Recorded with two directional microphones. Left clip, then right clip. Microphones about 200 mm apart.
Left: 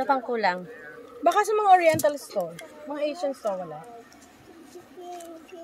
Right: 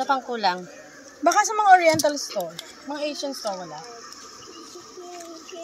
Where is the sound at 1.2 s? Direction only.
50° left (ahead or behind).